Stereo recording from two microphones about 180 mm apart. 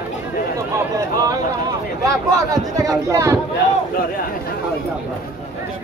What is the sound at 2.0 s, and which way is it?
Speech, 20° right (ahead or behind).